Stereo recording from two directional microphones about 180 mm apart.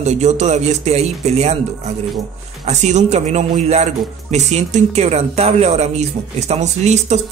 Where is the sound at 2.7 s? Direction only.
40° right (ahead or behind).